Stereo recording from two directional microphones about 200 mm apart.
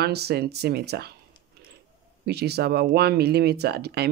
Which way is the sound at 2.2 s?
55° right (ahead or behind).